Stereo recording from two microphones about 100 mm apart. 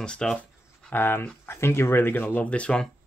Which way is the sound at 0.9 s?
20° left (ahead or behind).